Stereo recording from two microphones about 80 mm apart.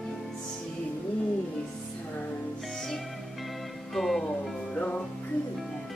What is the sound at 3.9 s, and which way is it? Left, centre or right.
Music, centre.